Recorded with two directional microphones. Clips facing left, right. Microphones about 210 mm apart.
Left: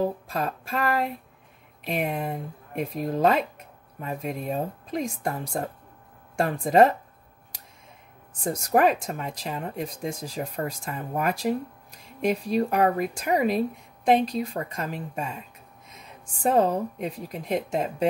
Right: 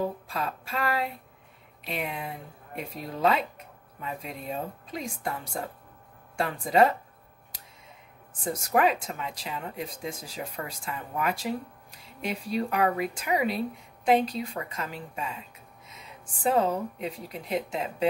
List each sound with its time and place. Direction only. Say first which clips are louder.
0.3 s speech: left 4 dB; 45° left (ahead or behind)
8.6 s speech: left 3 dB; 40° left (ahead or behind)